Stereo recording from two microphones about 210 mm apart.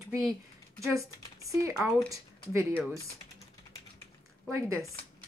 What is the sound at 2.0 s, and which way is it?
Speech, 15° right (ahead or behind).